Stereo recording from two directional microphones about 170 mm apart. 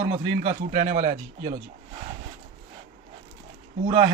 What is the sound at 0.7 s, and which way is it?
Speech, 45° right (ahead or behind).